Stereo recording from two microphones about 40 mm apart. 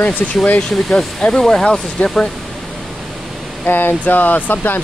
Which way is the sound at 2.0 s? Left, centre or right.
Left.